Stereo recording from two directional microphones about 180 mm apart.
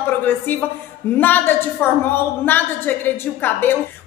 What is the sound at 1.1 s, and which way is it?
A woman's voice, 10° left (ahead or behind).